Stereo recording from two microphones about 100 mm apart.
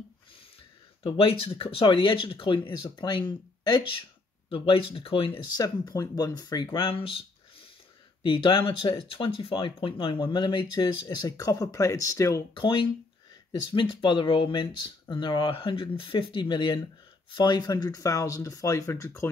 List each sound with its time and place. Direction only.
1.0 s speech: 70° left (ahead or behind)
4.5 s speech: 65° left (ahead or behind)
5.6 s speech: 40° left (ahead or behind)
12.5 s speech: 60° left (ahead or behind); by 19.0 s 30° left (ahead or behind)
19.0 s speech: 20° left (ahead or behind)